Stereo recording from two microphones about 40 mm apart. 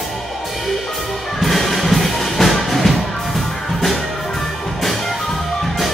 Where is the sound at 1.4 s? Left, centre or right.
Centre.